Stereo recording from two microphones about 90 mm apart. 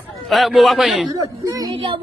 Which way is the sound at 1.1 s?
40° right (ahead or behind).